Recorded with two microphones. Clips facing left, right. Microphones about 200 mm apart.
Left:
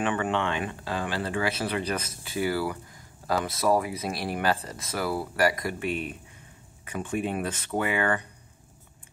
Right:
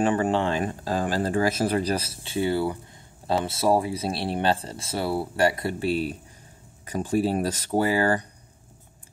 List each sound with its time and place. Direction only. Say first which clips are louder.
0.0 s speech: right 5 dB; 35° right (ahead or behind)